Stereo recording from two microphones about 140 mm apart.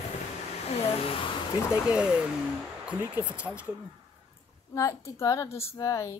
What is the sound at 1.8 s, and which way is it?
Speech, 10° right (ahead or behind).